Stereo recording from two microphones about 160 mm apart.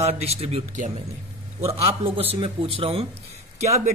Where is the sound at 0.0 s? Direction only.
40° right (ahead or behind).